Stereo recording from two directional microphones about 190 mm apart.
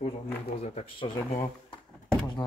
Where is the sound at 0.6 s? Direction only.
35° left (ahead or behind).